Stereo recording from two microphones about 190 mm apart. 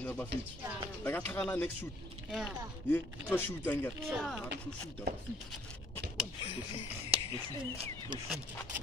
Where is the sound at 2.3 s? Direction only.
5° right (ahead or behind).